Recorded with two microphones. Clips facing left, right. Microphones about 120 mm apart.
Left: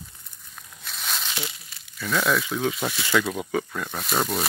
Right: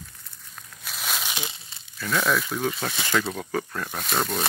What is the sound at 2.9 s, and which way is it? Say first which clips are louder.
Speech: left 2 dB; 20° right (ahead or behind).